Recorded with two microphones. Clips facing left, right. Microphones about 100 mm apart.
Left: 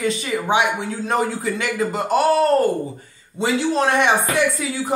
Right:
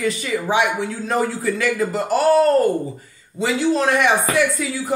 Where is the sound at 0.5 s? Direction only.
25° left (ahead or behind).